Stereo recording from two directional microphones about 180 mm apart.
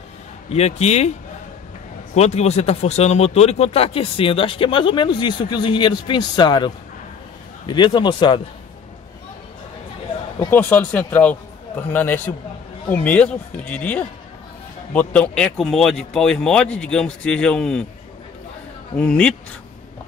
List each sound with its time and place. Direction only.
0.5 s a man's voice: 35° left (ahead or behind)
2.1 s speech: 35° left (ahead or behind)
10.4 s speech: 10° left (ahead or behind)
18.9 s speech: 5° left (ahead or behind)